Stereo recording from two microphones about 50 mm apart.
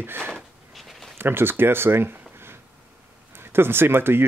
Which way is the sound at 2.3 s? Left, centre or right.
Right.